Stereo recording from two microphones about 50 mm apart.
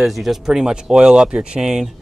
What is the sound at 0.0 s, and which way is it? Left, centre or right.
Speech, centre.